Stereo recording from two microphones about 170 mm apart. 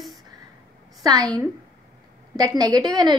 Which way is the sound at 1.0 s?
20° right (ahead or behind).